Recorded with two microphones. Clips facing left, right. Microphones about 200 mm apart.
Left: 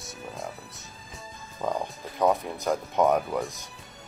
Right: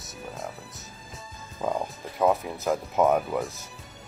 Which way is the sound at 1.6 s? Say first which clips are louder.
Right 1 dB; 5° right (ahead or behind).